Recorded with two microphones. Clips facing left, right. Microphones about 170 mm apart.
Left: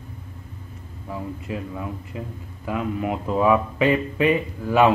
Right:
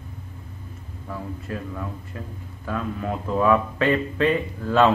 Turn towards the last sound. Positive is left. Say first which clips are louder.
# left 1 dB
turn(degrees=15)  # may be behind; listen again after turning